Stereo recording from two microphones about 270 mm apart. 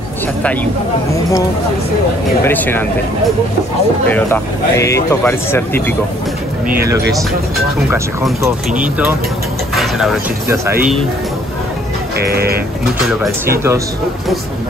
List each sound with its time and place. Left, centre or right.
2.4 s speech: centre
4.1 s speech: centre
7.9 s speech: centre
12.2 s music: right
13.2 s speech: centre